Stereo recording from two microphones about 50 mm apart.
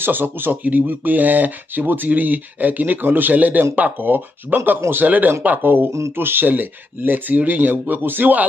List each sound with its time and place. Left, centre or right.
0.0 s speech: right
5.0 s speech: right
5.9 s speech: right
6.1 s speech: right